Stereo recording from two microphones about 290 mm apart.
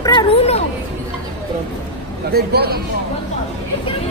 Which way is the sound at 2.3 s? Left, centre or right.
Right.